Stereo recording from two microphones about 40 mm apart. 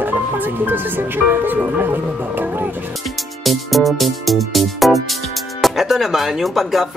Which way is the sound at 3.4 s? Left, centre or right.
Centre.